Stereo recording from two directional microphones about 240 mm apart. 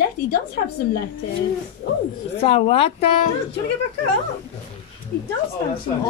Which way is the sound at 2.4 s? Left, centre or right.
Left.